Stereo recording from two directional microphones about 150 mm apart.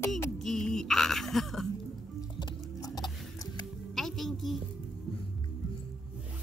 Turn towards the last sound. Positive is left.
turn(degrees=0)  # may be behind; listen again after turning